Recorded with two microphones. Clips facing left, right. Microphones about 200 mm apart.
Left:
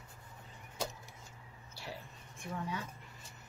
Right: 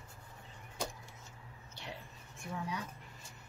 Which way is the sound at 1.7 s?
5° left (ahead or behind).